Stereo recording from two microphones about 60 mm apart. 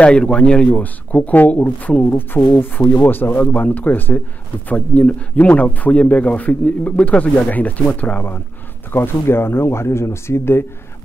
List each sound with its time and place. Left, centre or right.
0.0 s speech: centre
2.1 s speech: left
8.9 s speech: left